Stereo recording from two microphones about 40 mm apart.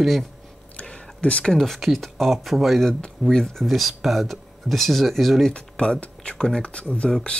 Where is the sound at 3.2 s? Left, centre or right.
Centre.